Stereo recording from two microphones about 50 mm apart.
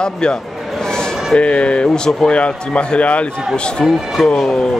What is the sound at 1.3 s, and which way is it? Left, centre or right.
A man's voice, left.